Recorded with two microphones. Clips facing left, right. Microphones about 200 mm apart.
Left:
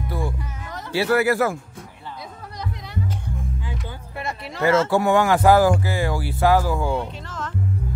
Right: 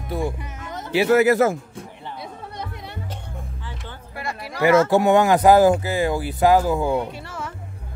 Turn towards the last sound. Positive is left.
turn(degrees=-10)  # may be behind; listen again after turning